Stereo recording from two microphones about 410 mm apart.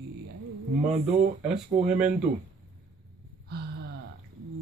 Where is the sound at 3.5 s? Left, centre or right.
Right.